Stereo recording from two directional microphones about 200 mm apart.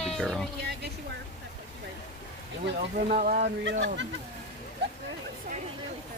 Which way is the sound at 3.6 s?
65° right (ahead or behind).